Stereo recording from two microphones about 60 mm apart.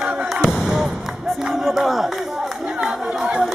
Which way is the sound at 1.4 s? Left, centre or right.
Centre.